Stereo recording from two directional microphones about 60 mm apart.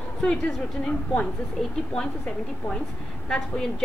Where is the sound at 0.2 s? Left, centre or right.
Centre.